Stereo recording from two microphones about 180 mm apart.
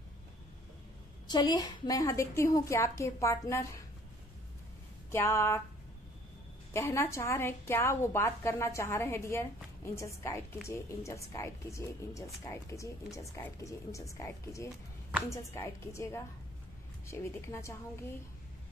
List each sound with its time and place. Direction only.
1.3 s speech: 20° left (ahead or behind)
5.1 s speech: 15° left (ahead or behind)
6.7 s speech: 15° left (ahead or behind)